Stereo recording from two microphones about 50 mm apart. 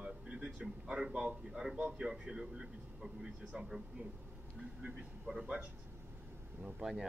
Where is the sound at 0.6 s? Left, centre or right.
Centre.